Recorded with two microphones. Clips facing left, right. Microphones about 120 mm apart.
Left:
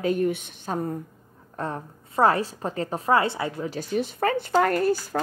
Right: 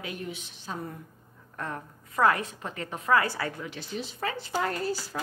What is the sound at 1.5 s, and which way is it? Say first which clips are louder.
A woman's voice: left 5 dB; 30° left (ahead or behind).